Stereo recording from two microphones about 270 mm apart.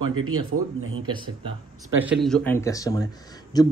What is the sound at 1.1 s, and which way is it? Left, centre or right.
Speech, centre.